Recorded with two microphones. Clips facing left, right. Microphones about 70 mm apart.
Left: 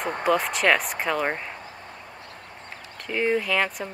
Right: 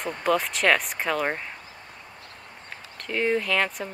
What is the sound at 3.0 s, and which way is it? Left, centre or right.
Speech, centre.